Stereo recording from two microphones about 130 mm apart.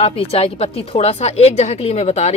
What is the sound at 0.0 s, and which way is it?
A woman's voice, 50° left (ahead or behind).